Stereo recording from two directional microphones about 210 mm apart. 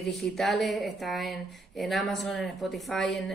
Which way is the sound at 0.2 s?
Centre (ahead or behind).